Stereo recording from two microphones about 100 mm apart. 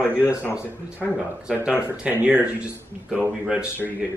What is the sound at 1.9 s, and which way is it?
Speech, 15° right (ahead or behind).